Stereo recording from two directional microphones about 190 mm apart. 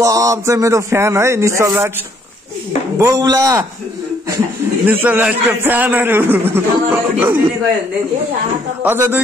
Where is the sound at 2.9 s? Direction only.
15° right (ahead or behind).